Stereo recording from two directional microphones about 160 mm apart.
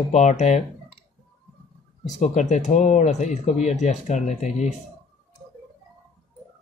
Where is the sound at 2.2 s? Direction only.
50° left (ahead or behind).